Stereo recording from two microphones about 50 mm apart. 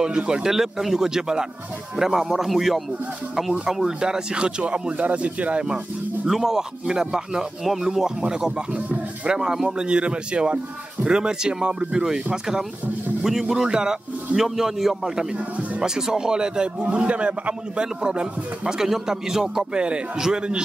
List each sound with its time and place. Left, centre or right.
0.0 s a man's voice: centre
3.8 s speech: centre
6.2 s a man's voice: centre